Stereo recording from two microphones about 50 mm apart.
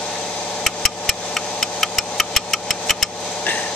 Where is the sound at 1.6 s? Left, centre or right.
Centre.